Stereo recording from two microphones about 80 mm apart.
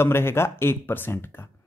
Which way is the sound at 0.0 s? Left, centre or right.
Left.